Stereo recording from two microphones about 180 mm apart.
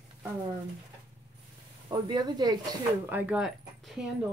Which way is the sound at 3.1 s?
10° right (ahead or behind).